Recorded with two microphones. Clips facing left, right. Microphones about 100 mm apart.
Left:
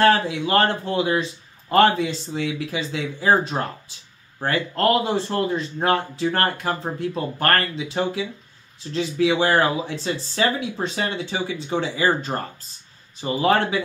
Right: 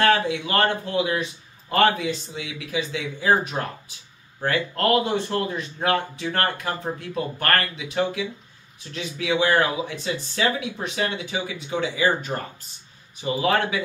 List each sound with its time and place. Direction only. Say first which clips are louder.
0.0 s speech: left 2 dB; 30° left (ahead or behind)